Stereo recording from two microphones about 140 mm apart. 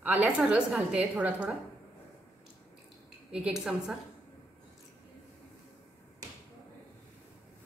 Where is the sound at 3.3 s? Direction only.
5° right (ahead or behind).